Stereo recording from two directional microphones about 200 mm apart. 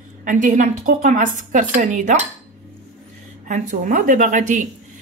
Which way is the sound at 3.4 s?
40° right (ahead or behind).